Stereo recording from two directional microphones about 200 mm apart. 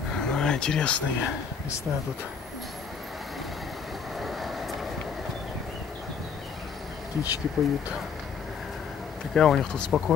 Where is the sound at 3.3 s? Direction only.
Centre (ahead or behind).